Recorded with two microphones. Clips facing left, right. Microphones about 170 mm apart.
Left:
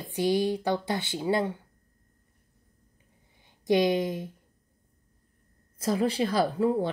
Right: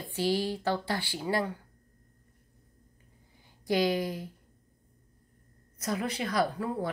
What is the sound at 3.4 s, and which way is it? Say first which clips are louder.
Speech: left 4 dB; 20° left (ahead or behind).